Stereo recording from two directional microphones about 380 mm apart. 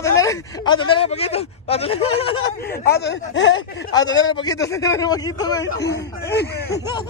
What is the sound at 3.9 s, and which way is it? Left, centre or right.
Speech, centre.